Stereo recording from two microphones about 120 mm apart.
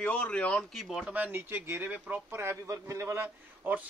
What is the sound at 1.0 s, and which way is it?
A man's voice, 15° right (ahead or behind).